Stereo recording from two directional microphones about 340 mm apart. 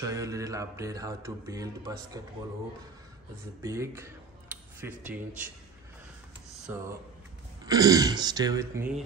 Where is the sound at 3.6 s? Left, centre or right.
Centre.